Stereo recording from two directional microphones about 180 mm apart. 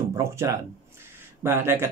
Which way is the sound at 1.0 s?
15° right (ahead or behind).